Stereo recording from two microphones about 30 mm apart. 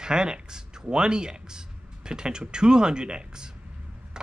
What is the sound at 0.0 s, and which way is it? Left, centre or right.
Speech, right.